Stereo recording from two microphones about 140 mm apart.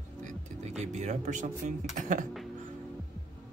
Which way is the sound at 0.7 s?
55° right (ahead or behind).